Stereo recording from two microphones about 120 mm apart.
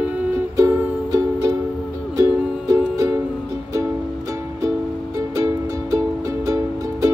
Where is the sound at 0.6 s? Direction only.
25° right (ahead or behind).